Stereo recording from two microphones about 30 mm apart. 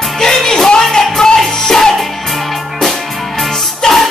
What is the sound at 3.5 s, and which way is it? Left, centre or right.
Music, centre.